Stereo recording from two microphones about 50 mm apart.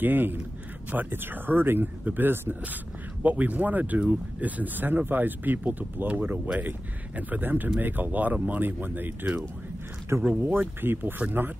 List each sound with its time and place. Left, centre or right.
0.0 s speech: right
2.6 s speech: right
10.4 s speech: right